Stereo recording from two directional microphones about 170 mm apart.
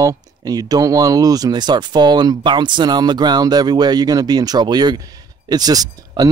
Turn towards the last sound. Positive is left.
turn(degrees=-20)  # may be behind; listen again after turning